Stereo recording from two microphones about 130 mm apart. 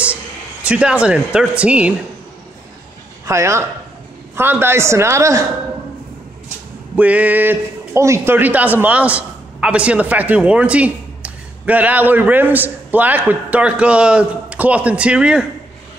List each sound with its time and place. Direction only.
0.7 s a man's voice: 10° right (ahead or behind)
3.3 s speech: 20° right (ahead or behind)
7.0 s a man's voice: 10° right (ahead or behind)